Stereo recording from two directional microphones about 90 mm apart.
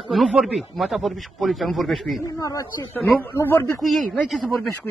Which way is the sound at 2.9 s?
25° left (ahead or behind).